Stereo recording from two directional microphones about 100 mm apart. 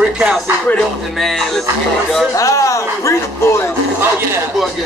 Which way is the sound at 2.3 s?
35° left (ahead or behind).